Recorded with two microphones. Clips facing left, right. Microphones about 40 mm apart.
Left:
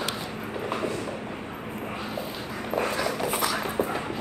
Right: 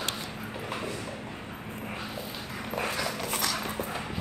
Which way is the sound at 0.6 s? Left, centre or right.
Centre.